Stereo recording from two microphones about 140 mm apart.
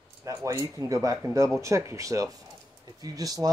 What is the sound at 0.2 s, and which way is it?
Speech, 20° right (ahead or behind).